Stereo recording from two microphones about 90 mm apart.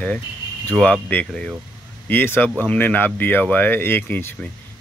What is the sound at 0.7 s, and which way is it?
Speech, 10° left (ahead or behind).